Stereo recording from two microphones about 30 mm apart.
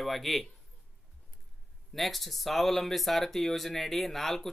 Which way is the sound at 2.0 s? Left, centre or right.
Centre.